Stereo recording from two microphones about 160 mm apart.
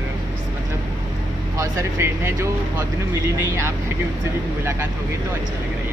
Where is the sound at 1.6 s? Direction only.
15° right (ahead or behind).